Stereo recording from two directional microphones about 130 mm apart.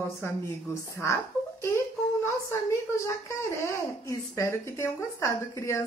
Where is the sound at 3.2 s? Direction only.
25° left (ahead or behind).